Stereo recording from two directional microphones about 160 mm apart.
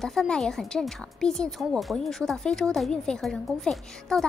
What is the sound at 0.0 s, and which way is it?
Speech, centre (ahead or behind).